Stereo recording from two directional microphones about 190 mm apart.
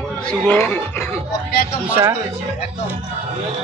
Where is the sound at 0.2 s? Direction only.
5° left (ahead or behind).